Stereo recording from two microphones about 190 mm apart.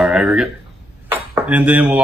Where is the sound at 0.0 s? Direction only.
5° right (ahead or behind).